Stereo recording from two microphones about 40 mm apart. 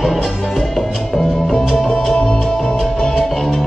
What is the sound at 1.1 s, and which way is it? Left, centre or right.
Music, centre.